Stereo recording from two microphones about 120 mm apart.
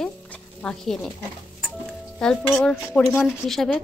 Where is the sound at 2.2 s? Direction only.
10° left (ahead or behind).